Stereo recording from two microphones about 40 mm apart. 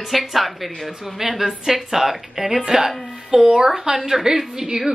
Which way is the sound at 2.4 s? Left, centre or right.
Right.